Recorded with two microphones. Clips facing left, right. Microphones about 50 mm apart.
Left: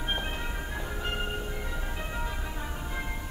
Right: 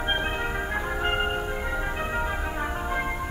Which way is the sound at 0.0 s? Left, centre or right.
Right.